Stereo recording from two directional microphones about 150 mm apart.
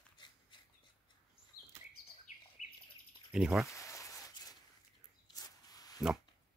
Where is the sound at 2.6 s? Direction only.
55° left (ahead or behind).